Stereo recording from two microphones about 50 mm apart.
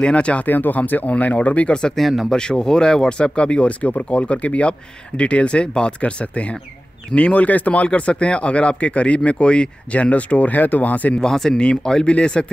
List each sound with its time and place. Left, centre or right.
0.0 s speech: left
0.5 s speech: left; by 2.0 s centre
2.0 s speech: centre; by 11.1 s left
11.1 s speech: centre